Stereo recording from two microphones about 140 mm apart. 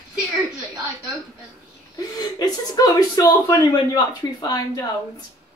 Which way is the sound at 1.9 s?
25° left (ahead or behind).